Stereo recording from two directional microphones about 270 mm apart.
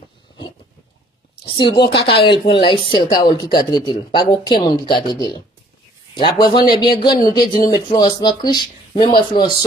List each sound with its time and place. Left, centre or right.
1.7 s speech: centre